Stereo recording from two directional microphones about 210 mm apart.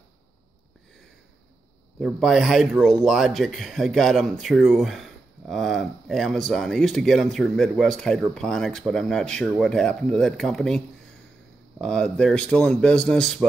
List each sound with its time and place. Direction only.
2.0 s speech: centre (ahead or behind)
11.8 s speech: 5° left (ahead or behind)